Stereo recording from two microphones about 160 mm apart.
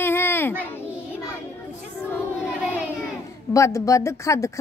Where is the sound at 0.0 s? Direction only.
15° left (ahead or behind).